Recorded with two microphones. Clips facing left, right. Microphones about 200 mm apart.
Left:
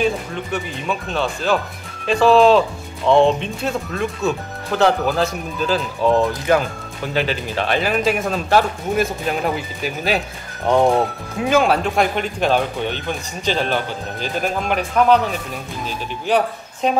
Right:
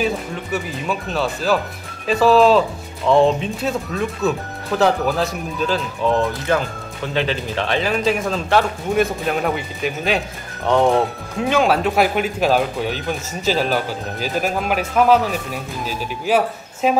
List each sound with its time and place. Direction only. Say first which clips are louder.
0.0 s speech: left 1 dB; 5° right (ahead or behind)
7.2 s speech: even; 5° left (ahead or behind)
11.4 s speech: even; centre (ahead or behind)
16.3 s speech: even; 5° right (ahead or behind)